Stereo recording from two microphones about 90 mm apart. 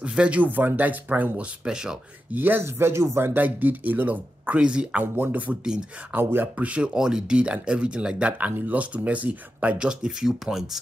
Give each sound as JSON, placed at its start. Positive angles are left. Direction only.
{"t": 0.0, "sound": "speech", "side_deg": -10}
{"t": 2.3, "sound": "speech", "side_deg": -20}